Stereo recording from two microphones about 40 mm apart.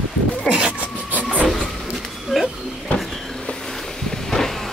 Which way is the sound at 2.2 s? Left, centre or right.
Centre.